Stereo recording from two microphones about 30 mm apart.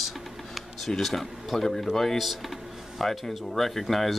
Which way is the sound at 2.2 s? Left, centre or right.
Centre.